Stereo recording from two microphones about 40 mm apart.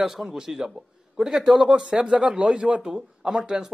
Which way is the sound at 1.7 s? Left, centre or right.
Right.